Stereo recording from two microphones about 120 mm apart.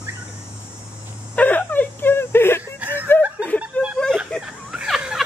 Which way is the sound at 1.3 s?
15° left (ahead or behind).